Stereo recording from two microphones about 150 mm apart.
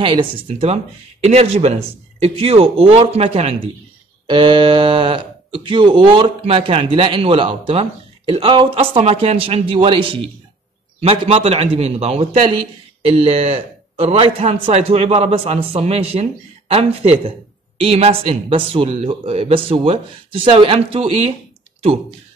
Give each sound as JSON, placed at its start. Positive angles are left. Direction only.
{"t": 0.0, "sound": "speech", "side_deg": -35}